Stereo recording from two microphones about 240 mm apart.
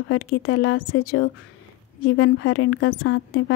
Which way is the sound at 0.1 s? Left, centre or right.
Left.